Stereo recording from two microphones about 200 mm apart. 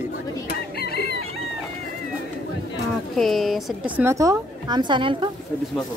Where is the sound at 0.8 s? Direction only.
55° left (ahead or behind).